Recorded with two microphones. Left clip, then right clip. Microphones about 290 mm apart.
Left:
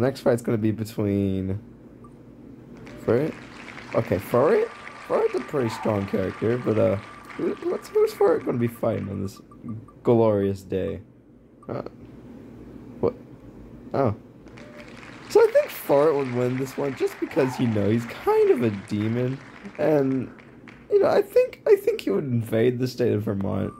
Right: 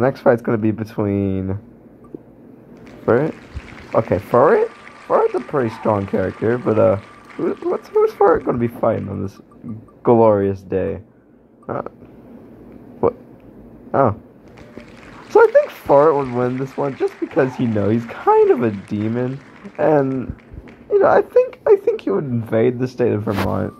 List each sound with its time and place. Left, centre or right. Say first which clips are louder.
0.0 s speech: right 7 dB; centre
3.1 s speech: right 7 dB; centre
11.6 s a sound: right 7 dB; centre
13.9 s speech: right 8 dB; centre